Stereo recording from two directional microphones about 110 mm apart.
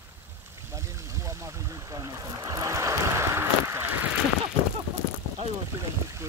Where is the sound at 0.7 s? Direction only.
25° right (ahead or behind).